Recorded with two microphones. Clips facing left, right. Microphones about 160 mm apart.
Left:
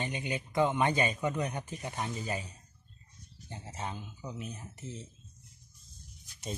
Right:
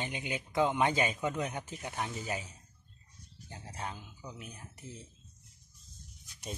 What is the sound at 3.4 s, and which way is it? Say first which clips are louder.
Speech: left 2 dB; 5° left (ahead or behind).